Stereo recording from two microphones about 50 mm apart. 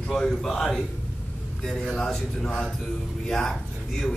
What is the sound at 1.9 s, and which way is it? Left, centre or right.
A man's voice, centre.